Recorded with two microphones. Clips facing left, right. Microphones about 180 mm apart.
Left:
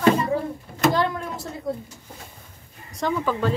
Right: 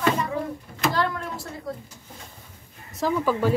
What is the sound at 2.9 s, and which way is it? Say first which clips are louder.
Speech: right 1 dB; 5° right (ahead or behind).